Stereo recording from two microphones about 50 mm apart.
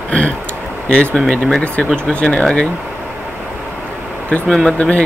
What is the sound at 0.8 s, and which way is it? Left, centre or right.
Speech, left.